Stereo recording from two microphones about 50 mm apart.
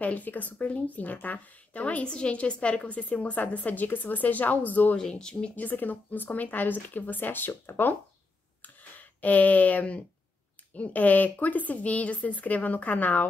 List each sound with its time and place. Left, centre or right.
0.0 s a woman's voice: left
4.9 s speech: centre
5.6 s a woman's voice: left
9.2 s a woman's voice: left